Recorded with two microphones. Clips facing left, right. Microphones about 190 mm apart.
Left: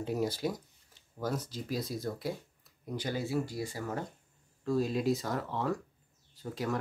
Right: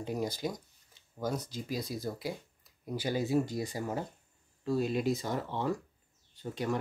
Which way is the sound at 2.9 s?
10° right (ahead or behind).